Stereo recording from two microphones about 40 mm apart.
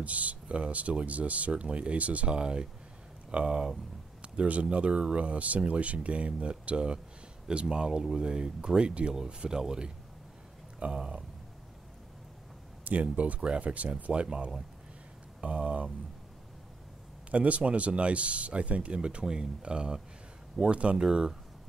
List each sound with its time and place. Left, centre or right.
0.0 s speech: right
2.3 s speech: right
12.8 s speech: right
17.3 s speech: right; by 21.4 s centre